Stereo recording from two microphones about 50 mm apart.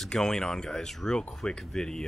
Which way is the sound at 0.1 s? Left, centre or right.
Centre.